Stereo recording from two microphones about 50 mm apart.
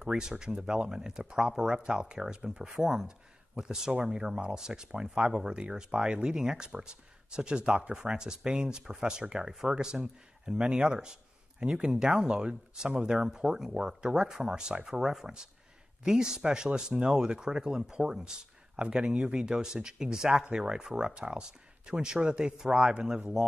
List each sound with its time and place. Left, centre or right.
0.0 s speech: centre
2.7 s speech: centre